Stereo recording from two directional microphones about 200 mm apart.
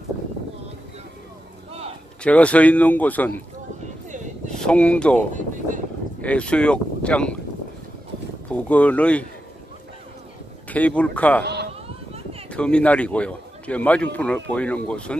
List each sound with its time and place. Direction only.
2.2 s a man's voice: 5° left (ahead or behind)
4.5 s speech: 5° left (ahead or behind)
6.2 s speech: 5° left (ahead or behind)
8.5 s a man's voice: 5° left (ahead or behind)
10.7 s a man's voice: 5° left (ahead or behind)
12.1 s a sound: 30° right (ahead or behind)
12.4 s a man's voice: 5° left (ahead or behind)